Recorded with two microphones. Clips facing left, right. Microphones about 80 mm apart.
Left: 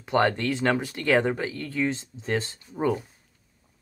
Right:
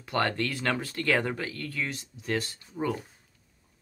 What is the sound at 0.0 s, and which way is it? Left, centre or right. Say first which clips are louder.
Speech: left 5 dB; left.